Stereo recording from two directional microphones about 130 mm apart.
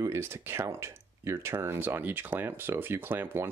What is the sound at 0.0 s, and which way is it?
Speech, 20° right (ahead or behind).